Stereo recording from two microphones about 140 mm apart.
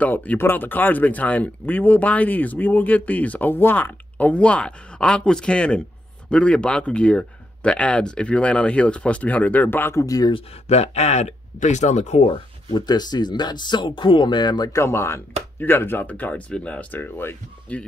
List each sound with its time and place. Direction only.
0.0 s speech: 10° left (ahead or behind)
10.3 s speech: 50° left (ahead or behind)
12.3 s speech: 35° left (ahead or behind); by 17.8 s 10° left (ahead or behind)